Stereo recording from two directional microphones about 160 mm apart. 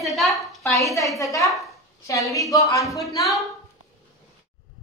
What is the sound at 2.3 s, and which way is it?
Speech, 20° left (ahead or behind).